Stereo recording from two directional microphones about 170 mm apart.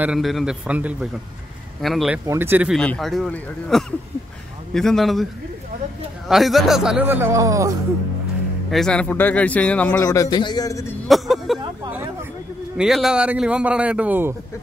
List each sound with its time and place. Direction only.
0.0 s speech: centre (ahead or behind)
2.2 s a man's voice: 15° right (ahead or behind)
2.7 s speech: 5° left (ahead or behind)
6.2 s a man's voice: centre (ahead or behind); by 7.7 s 20° right (ahead or behind)
8.6 s speech: 5° left (ahead or behind)
10.0 s a man's voice: 20° left (ahead or behind)
11.1 s speech: centre (ahead or behind)
11.9 s a man's voice: 15° right (ahead or behind)
12.7 s a man's voice: 5° right (ahead or behind)